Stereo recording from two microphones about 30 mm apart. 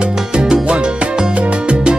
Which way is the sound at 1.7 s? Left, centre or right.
Right.